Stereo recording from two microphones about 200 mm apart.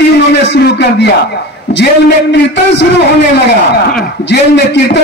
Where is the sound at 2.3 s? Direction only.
60° left (ahead or behind).